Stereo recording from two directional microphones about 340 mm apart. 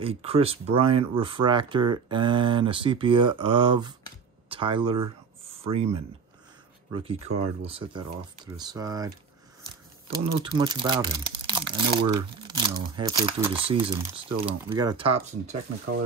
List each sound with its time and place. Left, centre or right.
0.0 s speech: centre